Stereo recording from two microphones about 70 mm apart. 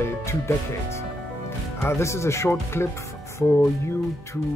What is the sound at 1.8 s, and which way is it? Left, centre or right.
Speech, left.